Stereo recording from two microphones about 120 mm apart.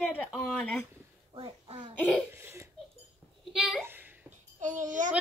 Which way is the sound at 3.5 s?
5° right (ahead or behind).